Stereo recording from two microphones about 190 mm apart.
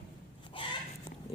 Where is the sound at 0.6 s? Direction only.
25° left (ahead or behind).